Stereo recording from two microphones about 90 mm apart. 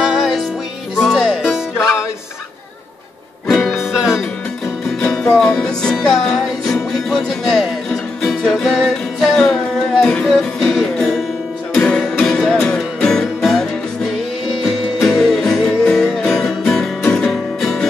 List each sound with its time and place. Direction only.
0.0 s music: centre (ahead or behind)
1.5 s music: 30° left (ahead or behind)
3.4 s music: 5° left (ahead or behind)
5.0 s music: 10° left (ahead or behind)
15.0 s music: centre (ahead or behind)